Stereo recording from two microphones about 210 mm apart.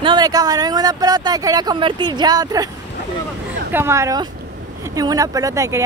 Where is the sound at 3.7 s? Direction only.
10° right (ahead or behind).